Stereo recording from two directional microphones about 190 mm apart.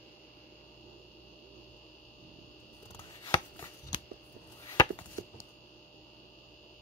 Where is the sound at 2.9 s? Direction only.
25° left (ahead or behind).